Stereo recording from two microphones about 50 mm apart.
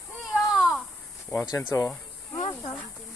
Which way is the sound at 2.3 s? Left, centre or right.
Left.